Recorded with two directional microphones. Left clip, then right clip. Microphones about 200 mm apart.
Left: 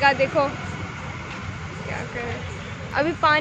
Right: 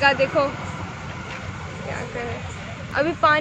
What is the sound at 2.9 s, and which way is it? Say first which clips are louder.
Speech: right 1 dB; centre (ahead or behind).